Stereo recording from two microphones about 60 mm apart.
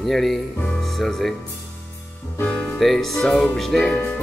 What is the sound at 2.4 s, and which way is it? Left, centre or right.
Speech, centre.